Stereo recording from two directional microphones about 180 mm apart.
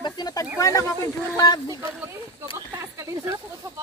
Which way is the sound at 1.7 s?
15° right (ahead or behind).